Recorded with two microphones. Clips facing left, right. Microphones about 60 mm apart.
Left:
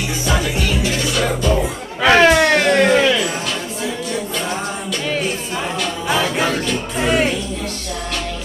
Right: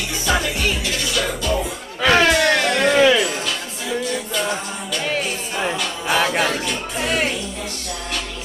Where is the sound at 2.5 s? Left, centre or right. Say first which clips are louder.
Left 4 dB; left.